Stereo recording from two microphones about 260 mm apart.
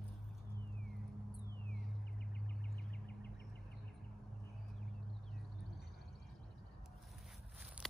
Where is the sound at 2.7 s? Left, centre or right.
Left.